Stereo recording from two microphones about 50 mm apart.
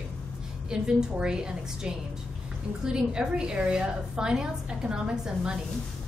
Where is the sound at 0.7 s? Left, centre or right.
Centre.